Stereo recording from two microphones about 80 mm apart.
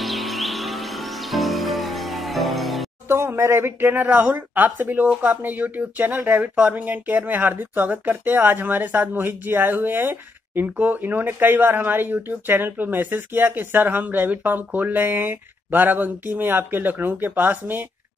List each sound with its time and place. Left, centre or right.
0.0 s music: centre
3.1 s speech: right